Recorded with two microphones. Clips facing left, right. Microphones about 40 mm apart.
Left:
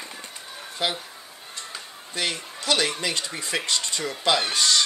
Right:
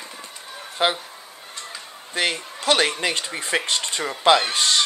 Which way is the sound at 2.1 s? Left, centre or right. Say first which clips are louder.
Right 5 dB; right.